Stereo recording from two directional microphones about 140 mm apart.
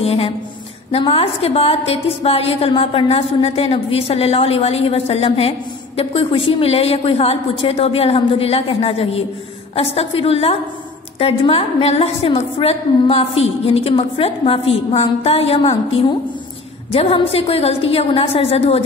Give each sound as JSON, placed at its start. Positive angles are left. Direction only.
{"t": 0.0, "sound": "a woman's voice", "side_deg": 45}
{"t": 16.9, "sound": "a woman's voice", "side_deg": 45}